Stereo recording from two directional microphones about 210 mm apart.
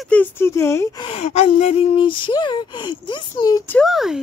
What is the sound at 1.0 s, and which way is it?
Speech, 30° left (ahead or behind).